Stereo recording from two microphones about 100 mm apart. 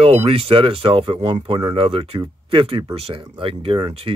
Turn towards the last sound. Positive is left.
turn(degrees=-65)  # may be behind; listen again after turning